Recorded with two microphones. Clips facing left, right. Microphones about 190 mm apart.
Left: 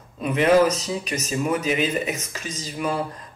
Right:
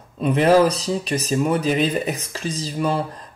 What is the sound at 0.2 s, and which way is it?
Speech, 35° right (ahead or behind).